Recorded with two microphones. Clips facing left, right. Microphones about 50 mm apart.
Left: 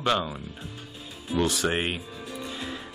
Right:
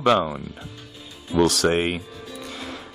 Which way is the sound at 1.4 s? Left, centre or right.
Right.